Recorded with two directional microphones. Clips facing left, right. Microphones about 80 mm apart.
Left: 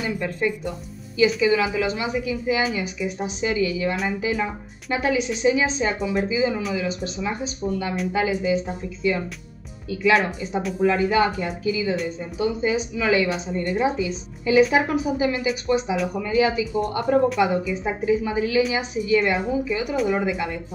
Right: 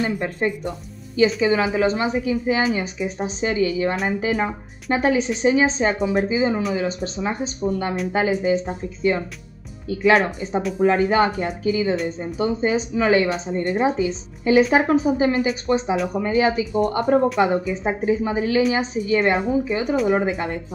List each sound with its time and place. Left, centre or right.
0.0 s speech: right
17.0 s speech: right
17.4 s speech: right